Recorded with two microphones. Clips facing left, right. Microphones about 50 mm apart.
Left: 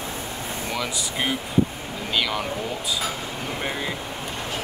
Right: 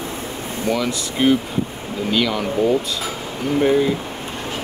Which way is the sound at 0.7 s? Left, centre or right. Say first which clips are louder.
Right 9 dB; centre.